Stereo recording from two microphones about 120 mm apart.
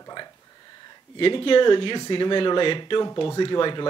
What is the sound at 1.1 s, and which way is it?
Speech, 50° left (ahead or behind).